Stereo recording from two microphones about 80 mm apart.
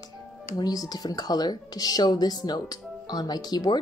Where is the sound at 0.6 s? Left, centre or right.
Left.